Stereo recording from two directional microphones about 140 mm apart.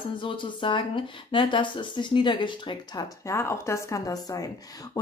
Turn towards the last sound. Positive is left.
turn(degrees=25)  # may be behind; listen again after turning